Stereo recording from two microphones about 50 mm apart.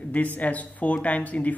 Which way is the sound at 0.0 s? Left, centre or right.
Left.